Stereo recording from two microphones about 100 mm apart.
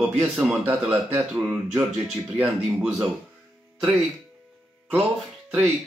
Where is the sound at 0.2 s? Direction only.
20° right (ahead or behind).